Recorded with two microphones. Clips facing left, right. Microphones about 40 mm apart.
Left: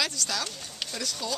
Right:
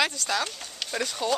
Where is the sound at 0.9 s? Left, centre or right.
Right.